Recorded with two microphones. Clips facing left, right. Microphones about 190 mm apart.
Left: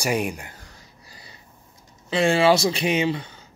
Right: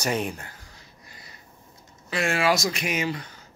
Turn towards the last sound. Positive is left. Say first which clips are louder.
# left 6 dB
turn(degrees=25)  # may be behind; listen again after turning